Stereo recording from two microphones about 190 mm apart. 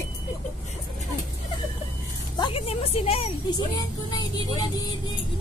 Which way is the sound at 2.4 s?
30° left (ahead or behind).